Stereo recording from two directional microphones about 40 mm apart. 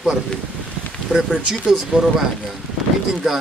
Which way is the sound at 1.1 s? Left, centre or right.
Right.